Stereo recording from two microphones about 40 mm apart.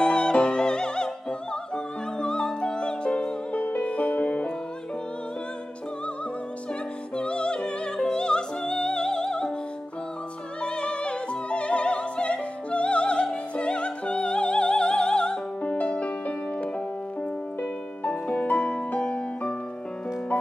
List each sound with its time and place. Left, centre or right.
0.0 s music: left
7.2 s music: left
10.6 s music: left
17.6 s music: left